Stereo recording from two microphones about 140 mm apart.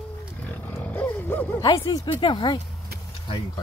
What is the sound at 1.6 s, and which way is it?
Speech, 30° left (ahead or behind).